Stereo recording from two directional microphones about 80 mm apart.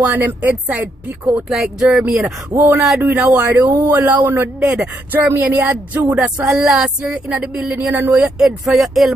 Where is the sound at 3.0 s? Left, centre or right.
Centre.